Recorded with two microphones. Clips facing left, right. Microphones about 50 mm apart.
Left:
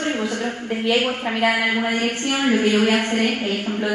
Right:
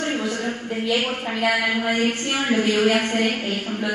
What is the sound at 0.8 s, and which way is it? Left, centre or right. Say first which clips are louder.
Speech: left 3 dB; left.